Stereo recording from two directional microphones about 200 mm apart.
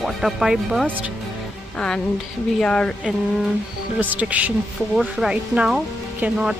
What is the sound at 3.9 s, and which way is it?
Speech, 10° right (ahead or behind).